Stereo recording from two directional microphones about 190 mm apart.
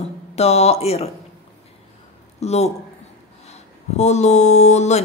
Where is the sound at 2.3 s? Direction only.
35° left (ahead or behind).